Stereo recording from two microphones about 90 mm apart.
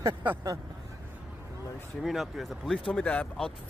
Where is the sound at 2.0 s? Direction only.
Centre (ahead or behind).